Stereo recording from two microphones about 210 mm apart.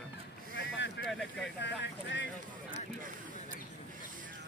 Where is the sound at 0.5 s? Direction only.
55° left (ahead or behind).